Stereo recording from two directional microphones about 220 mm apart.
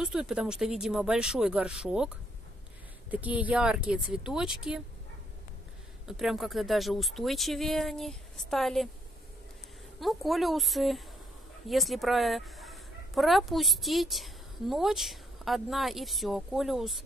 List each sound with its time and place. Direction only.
0.0 s speech: 5° right (ahead or behind)
3.1 s speech: 5° right (ahead or behind)
6.0 s speech: centre (ahead or behind)
9.9 s speech: centre (ahead or behind)
11.7 s fowl: centre (ahead or behind)